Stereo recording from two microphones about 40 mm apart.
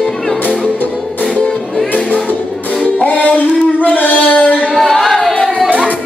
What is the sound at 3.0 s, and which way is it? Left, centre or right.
Music, left.